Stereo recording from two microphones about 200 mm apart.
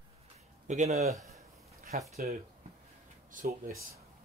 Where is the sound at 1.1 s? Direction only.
15° right (ahead or behind).